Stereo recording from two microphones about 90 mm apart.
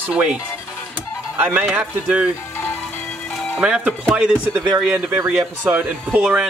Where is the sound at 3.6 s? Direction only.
10° right (ahead or behind).